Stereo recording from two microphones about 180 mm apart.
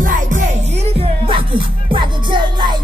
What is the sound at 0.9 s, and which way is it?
Music, 30° right (ahead or behind).